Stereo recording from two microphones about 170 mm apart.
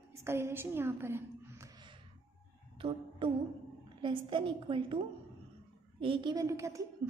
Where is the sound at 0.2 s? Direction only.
15° right (ahead or behind).